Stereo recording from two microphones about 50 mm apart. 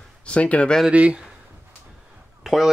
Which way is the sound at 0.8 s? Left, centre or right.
Right.